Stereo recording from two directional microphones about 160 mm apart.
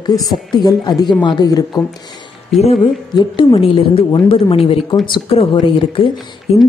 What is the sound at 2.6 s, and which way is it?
Speech, 40° left (ahead or behind).